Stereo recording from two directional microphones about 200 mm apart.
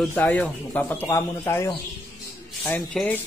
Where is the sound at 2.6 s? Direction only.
5° left (ahead or behind).